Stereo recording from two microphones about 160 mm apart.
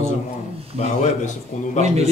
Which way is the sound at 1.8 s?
40° right (ahead or behind).